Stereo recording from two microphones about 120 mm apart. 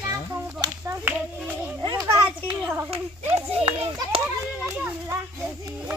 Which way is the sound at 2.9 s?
60° right (ahead or behind).